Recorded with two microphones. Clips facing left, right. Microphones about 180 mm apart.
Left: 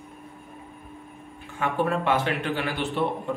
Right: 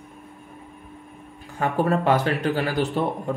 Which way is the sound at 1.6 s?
40° right (ahead or behind).